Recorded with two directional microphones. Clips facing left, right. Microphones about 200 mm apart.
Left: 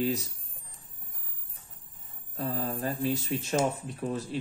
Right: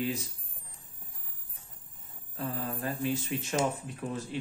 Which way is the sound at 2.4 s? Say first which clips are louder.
Left 3 dB; 35° left (ahead or behind).